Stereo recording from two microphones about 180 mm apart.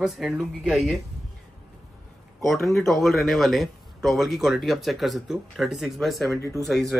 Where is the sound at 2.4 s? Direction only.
Centre (ahead or behind).